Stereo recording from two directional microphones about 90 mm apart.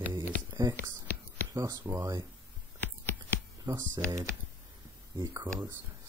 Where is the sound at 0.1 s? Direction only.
35° right (ahead or behind).